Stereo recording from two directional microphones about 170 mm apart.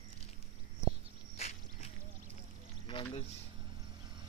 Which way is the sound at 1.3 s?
40° left (ahead or behind).